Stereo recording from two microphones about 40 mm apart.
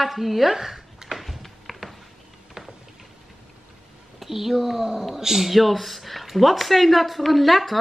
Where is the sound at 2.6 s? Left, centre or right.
Centre.